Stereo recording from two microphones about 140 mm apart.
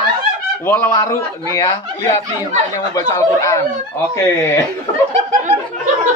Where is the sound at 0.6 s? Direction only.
15° left (ahead or behind).